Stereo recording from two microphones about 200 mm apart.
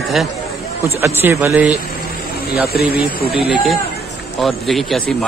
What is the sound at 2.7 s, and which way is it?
Speech, 50° left (ahead or behind).